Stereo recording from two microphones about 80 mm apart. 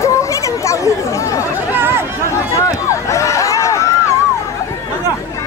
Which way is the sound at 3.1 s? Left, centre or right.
Left.